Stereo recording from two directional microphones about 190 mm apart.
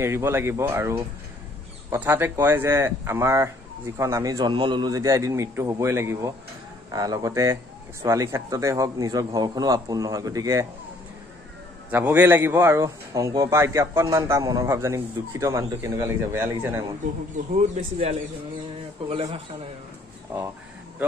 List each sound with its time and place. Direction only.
0.0 s speech: 15° right (ahead or behind)
11.9 s speech: 10° right (ahead or behind)
17.6 s speech: 35° right (ahead or behind)